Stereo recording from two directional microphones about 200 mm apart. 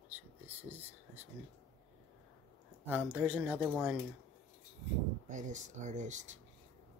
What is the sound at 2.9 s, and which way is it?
Speech, 5° right (ahead or behind).